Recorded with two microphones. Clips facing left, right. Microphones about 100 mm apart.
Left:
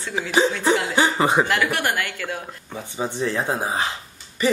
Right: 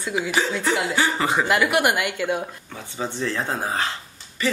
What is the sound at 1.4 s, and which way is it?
Speech, 15° right (ahead or behind).